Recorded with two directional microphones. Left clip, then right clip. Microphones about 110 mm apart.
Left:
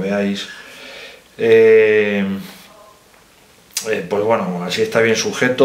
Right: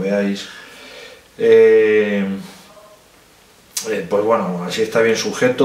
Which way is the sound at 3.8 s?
20° left (ahead or behind).